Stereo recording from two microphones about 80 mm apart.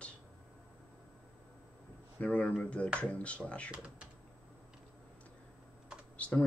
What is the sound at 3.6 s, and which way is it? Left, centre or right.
Speech, centre.